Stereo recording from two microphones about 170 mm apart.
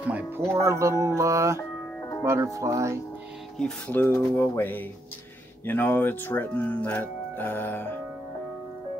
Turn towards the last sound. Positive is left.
turn(degrees=10)  # may be behind; listen again after turning